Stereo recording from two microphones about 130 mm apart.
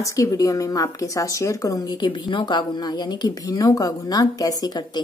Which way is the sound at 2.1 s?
35° left (ahead or behind).